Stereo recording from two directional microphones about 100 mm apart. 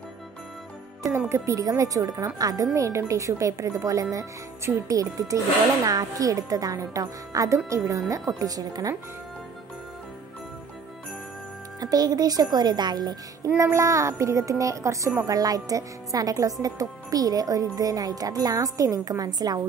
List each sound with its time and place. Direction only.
1.1 s speech: 30° right (ahead or behind)
11.8 s speech: 40° right (ahead or behind)
13.6 s speech: 30° right (ahead or behind)